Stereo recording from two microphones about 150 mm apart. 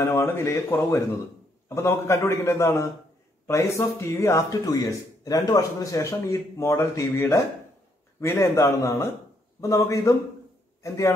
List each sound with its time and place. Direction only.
0.0 s a man's voice: 15° left (ahead or behind)